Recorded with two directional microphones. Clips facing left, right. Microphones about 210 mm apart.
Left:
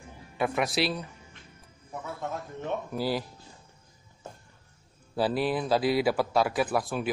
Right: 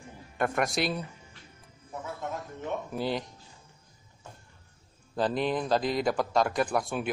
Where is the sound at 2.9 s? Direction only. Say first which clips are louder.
Left 1 dB; 5° left (ahead or behind).